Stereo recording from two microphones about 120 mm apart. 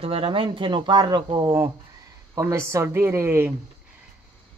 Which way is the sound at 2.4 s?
25° right (ahead or behind).